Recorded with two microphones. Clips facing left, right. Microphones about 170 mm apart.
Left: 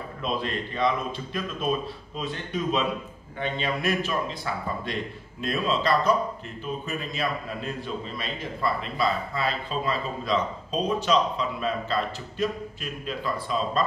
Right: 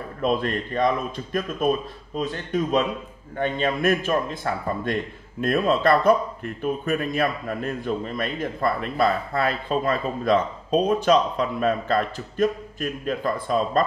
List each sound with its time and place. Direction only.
0.2 s speech: 50° right (ahead or behind)